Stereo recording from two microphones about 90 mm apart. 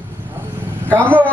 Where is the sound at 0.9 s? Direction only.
15° left (ahead or behind).